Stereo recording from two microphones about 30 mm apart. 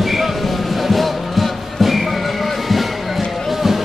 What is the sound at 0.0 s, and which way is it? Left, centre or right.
Music, centre.